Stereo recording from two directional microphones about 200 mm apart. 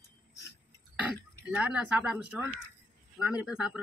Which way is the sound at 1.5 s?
5° right (ahead or behind).